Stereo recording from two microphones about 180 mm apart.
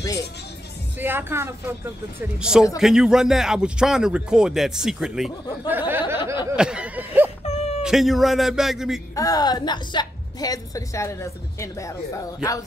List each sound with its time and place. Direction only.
0.9 s speech: 10° right (ahead or behind)
5.7 s a sound: 10° right (ahead or behind)
7.4 s whimper: 35° left (ahead or behind)
7.8 s speech: centre (ahead or behind)
9.1 s a woman's voice: 20° left (ahead or behind)